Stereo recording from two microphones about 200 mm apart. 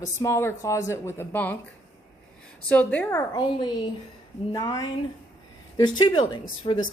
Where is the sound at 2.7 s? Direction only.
5° left (ahead or behind).